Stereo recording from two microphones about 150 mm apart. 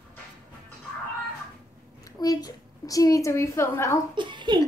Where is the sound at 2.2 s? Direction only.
25° left (ahead or behind).